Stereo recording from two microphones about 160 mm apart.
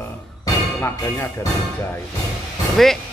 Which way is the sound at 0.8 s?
20° left (ahead or behind).